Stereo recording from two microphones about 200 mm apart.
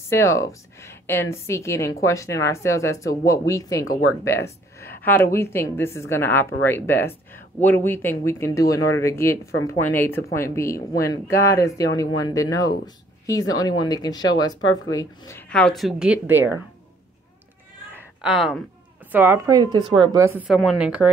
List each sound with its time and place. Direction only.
0.1 s a woman's voice: 15° left (ahead or behind); by 16.6 s 10° right (ahead or behind)
17.9 s a sound: centre (ahead or behind)
19.1 s a woman's voice: 10° right (ahead or behind)
20.4 s a woman's voice: centre (ahead or behind)